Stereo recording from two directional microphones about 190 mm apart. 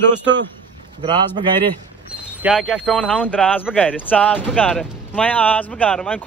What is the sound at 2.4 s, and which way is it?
Speech, 5° right (ahead or behind).